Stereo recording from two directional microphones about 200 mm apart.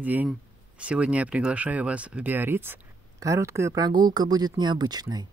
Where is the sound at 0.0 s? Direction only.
10° right (ahead or behind).